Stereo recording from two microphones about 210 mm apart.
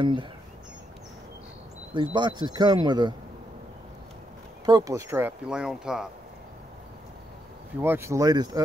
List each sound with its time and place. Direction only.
0.0 s speech: 20° right (ahead or behind)
2.0 s speech: 20° right (ahead or behind)
4.6 s speech: 15° right (ahead or behind)
7.8 s speech: 10° right (ahead or behind)